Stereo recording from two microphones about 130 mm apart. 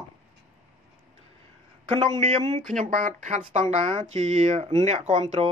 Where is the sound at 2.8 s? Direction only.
65° right (ahead or behind).